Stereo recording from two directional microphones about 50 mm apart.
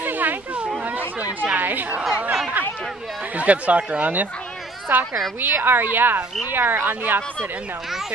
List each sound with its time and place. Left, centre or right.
0.0 s a sound: right
0.8 s chatter: right
3.3 s a woman's voice: right